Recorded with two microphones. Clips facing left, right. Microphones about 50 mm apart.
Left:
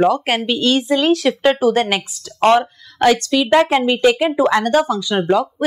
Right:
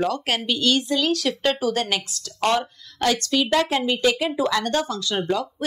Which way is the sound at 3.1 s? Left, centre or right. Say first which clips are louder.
Left 6 dB; centre.